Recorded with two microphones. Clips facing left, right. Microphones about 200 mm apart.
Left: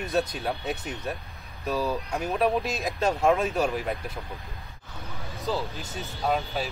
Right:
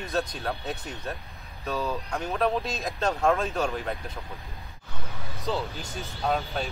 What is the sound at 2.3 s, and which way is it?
Speech, 10° left (ahead or behind).